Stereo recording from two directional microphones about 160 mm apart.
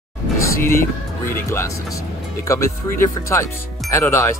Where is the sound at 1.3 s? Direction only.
15° left (ahead or behind).